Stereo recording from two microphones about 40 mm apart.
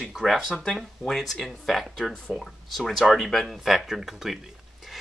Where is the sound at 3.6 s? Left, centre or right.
Centre.